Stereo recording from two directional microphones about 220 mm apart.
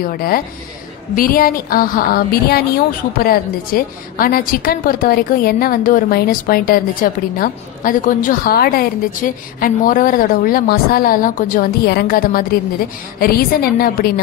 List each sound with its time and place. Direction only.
0.0 s a woman's voice: 40° left (ahead or behind)